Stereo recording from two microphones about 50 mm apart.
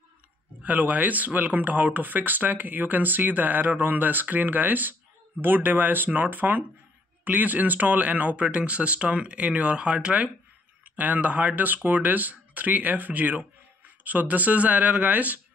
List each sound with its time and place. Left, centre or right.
0.6 s speech: right